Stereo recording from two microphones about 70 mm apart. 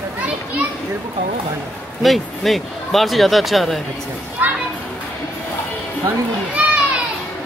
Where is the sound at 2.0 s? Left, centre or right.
Centre.